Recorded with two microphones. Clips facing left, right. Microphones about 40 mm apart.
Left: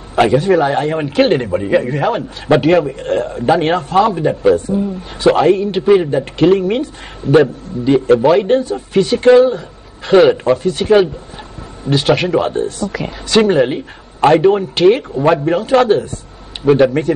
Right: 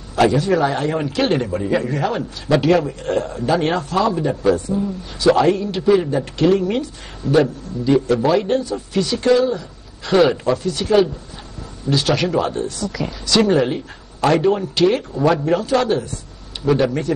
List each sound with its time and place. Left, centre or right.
0.1 s a man's voice: left